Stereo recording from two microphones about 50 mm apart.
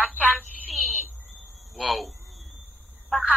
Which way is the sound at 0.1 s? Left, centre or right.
Left.